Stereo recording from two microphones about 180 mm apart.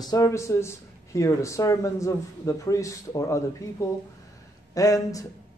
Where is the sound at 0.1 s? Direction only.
15° left (ahead or behind).